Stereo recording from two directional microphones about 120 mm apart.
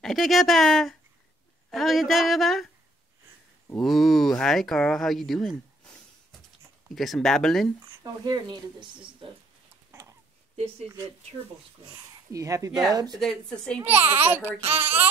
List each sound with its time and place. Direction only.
0.0 s speech: centre (ahead or behind)
3.8 s speech: centre (ahead or behind)
7.0 s speech: 5° left (ahead or behind)
8.0 s speech: 35° right (ahead or behind)
9.8 s a sound: 20° right (ahead or behind)
10.5 s speech: 60° right (ahead or behind)
12.3 s speech: 25° right (ahead or behind)
13.1 s speech: 5° left (ahead or behind)
13.9 s a child's voice: 15° right (ahead or behind)